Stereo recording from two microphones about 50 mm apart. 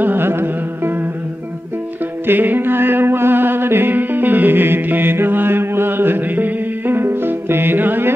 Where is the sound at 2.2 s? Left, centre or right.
Right.